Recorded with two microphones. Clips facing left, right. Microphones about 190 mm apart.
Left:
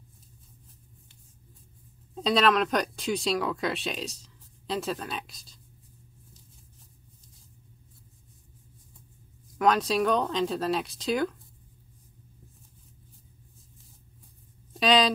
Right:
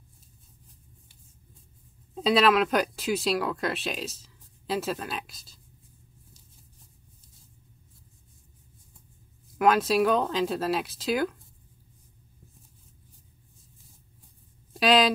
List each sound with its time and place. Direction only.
2.1 s speech: 5° right (ahead or behind)
9.6 s speech: 5° right (ahead or behind)
14.7 s a sound: 5° right (ahead or behind)